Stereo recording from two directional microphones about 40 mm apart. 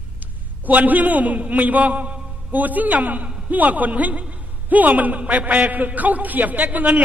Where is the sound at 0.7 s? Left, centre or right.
Right.